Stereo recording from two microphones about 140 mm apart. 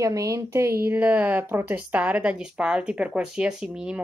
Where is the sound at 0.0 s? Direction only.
25° right (ahead or behind).